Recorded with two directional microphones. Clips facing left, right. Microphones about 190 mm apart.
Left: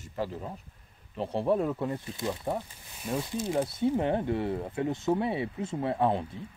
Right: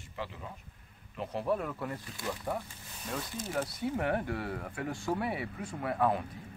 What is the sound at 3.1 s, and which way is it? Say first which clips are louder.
Speech: left 6 dB; 10° left (ahead or behind).